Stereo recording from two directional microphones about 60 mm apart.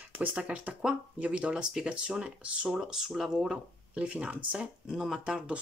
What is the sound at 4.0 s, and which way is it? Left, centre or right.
Speech, centre.